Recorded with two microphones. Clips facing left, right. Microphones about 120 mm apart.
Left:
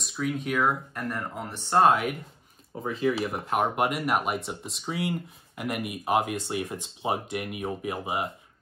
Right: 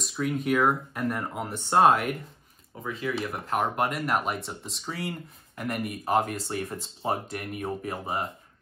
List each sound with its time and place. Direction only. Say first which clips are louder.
0.0 s speech: right 1 dB; centre (ahead or behind)
2.8 s speech: left 5 dB; 30° left (ahead or behind)
3.2 s speech: left 2 dB; 5° left (ahead or behind)